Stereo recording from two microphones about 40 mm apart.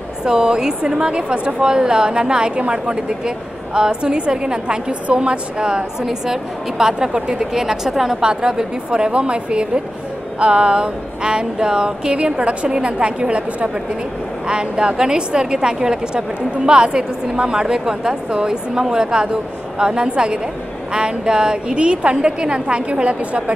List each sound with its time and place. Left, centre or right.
0.2 s a woman's voice: centre
6.0 s a woman's voice: centre
8.2 s a woman's voice: centre